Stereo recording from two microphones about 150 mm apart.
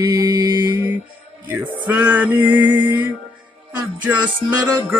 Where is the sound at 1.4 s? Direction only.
15° right (ahead or behind).